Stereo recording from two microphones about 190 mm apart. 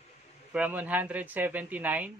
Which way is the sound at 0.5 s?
10° right (ahead or behind).